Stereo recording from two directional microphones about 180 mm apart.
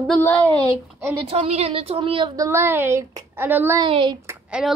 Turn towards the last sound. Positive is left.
turn(degrees=-5)  # may be behind; listen again after turning